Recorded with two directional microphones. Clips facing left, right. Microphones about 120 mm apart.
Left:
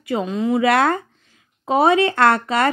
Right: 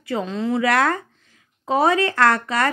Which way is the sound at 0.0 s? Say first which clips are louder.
Left 3 dB; 20° left (ahead or behind).